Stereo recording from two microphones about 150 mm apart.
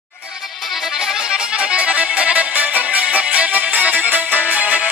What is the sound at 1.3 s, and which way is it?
Music, 5° right (ahead or behind).